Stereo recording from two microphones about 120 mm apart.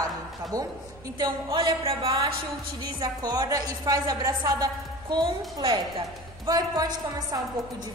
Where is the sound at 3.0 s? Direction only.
35° right (ahead or behind).